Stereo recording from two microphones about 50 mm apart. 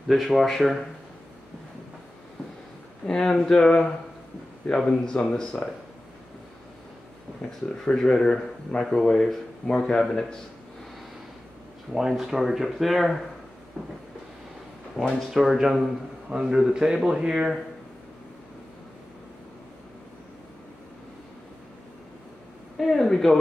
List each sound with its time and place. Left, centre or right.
0.1 s speech: centre
3.1 s a man's voice: centre
7.7 s a man's voice: centre
11.9 s speech: centre
13.8 s a sound: right
15.0 s speech: centre
15.3 s a man's voice: centre
22.8 s a sound: centre